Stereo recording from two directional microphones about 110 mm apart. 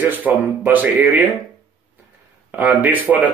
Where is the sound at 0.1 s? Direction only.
15° right (ahead or behind).